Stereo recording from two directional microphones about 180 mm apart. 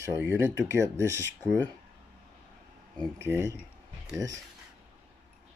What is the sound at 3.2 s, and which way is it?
Speech, 15° right (ahead or behind).